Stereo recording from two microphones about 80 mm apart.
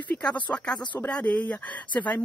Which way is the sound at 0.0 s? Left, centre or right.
Centre.